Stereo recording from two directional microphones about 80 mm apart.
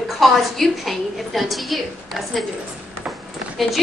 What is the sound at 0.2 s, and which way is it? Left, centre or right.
A woman's voice, centre.